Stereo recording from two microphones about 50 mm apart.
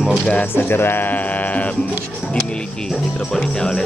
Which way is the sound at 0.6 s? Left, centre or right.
Left.